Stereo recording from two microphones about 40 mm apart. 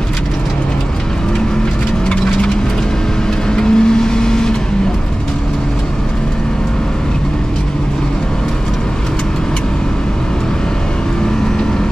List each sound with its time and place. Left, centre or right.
3.5 s vehicle: centre